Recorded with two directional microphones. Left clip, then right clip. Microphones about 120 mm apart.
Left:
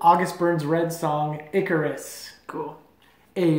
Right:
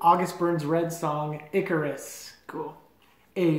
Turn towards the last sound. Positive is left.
turn(degrees=15)  # may be behind; listen again after turning